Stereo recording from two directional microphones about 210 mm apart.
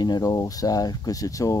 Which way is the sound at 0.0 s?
20° left (ahead or behind).